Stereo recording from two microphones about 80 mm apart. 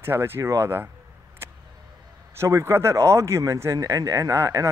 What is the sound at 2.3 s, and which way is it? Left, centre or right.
Speech, right.